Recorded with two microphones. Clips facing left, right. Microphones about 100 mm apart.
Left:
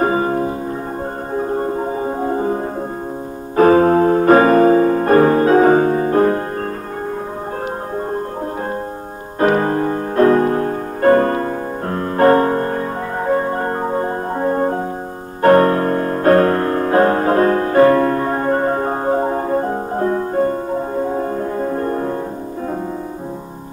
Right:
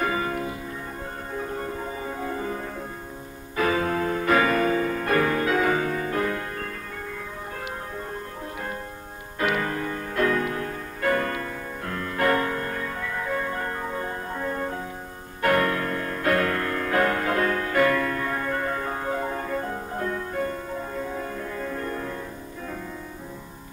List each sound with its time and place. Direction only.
0.0 s music: 35° left (ahead or behind)
9.4 s music: 40° left (ahead or behind)